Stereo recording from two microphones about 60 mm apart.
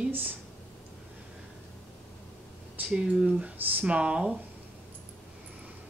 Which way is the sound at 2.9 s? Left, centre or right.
Right.